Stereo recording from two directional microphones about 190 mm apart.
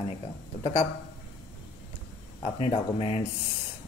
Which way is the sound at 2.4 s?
30° left (ahead or behind).